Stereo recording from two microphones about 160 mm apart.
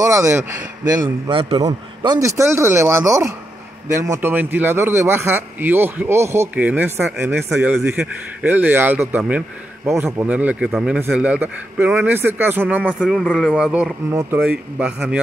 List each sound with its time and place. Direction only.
0.0 s a man's voice: 20° right (ahead or behind)
1.3 s a man's voice: 35° right (ahead or behind)
1.7 s a man's voice: 20° right (ahead or behind)
13.0 s a man's voice: centre (ahead or behind)